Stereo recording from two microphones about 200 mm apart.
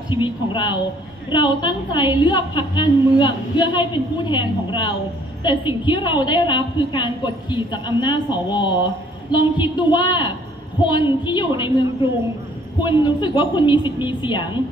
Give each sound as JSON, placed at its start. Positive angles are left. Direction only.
{"t": 0.1, "sound": "a woman's voice", "side_deg": 25}
{"t": 12.8, "sound": "a woman's voice", "side_deg": 20}